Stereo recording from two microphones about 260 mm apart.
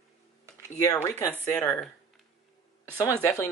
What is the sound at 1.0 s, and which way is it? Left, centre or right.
Speech, centre.